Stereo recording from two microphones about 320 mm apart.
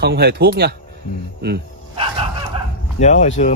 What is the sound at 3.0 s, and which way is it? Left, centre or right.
Speech, left.